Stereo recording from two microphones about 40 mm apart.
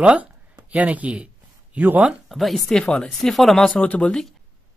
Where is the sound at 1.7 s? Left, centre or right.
Right.